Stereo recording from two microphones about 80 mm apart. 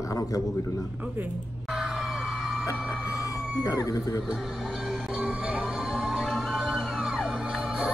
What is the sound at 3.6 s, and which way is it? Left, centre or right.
Speech, left.